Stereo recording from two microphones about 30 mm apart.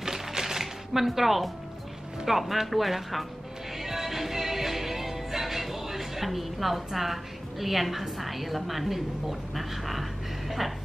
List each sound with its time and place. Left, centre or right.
0.0 s a sound: centre
1.0 s speech: centre
3.8 s music: centre